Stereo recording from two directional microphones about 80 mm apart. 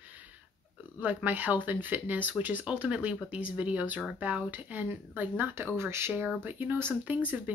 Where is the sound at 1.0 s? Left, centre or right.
Right.